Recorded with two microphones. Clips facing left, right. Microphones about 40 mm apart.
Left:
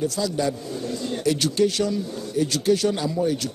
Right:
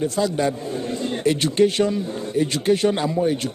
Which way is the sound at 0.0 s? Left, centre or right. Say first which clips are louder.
Right 3 dB; right.